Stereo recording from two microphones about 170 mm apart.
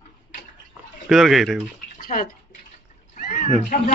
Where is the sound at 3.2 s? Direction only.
60° left (ahead or behind).